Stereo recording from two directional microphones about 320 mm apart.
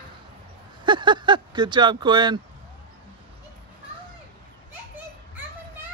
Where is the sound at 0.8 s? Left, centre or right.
Centre.